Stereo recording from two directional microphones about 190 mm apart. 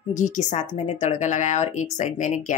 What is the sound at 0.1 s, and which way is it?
Speech, 40° left (ahead or behind).